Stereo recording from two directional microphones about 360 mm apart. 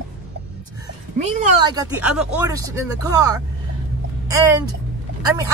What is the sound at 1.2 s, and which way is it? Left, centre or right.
Speech, centre.